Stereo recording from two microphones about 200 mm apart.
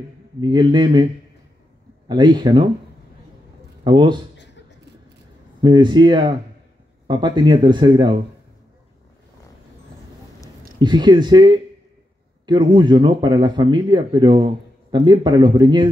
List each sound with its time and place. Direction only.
0.4 s speech: 20° right (ahead or behind)
2.0 s speech: 20° right (ahead or behind)
3.8 s speech: 25° right (ahead or behind)
4.4 s a sound: 60° left (ahead or behind)
5.6 s speech: 20° right (ahead or behind)
10.8 s speech: 20° right (ahead or behind)